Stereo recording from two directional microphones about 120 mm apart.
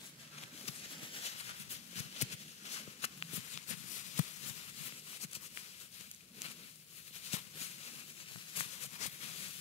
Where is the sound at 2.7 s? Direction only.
60° left (ahead or behind).